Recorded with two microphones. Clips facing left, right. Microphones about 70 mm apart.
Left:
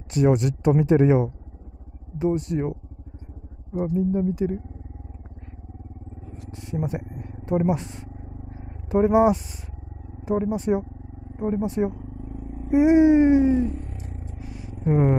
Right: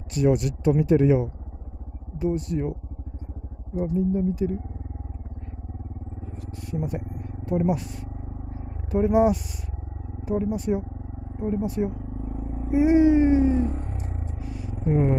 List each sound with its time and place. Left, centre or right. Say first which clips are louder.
0.1 s speech: left 2 dB; left
3.7 s speech: left 1 dB; left
6.5 s vehicle: left 2 dB; left
7.4 s speech: left 1 dB; left
8.9 s speech: left 3 dB; left
10.4 s speech: left 2 dB; left
12.2 s vehicle: right 3 dB; right
12.7 s vehicle: left 2 dB; centre
13.5 s vehicle: left 2 dB; right
14.9 s speech: left 2 dB; left